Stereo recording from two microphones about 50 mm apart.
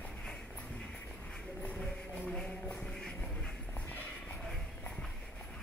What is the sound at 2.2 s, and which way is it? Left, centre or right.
Music, centre.